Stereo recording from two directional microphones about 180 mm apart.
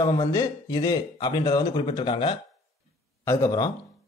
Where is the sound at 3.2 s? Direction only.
15° left (ahead or behind).